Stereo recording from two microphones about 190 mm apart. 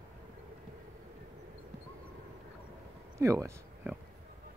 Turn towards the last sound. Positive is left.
turn(degrees=-15)  # may be behind; listen again after turning